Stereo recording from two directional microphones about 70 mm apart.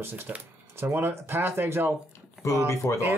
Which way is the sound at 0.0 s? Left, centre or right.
Right.